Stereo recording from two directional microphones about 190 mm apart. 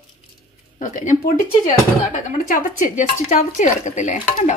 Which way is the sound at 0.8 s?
40° left (ahead or behind).